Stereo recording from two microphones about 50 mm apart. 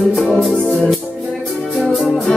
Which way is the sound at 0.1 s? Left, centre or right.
Centre.